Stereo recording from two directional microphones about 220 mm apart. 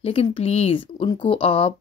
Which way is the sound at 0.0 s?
25° left (ahead or behind).